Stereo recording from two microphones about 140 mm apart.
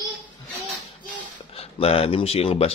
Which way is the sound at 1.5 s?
45° left (ahead or behind).